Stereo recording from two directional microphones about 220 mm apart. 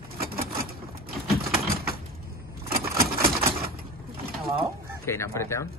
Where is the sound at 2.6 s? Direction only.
45° right (ahead or behind).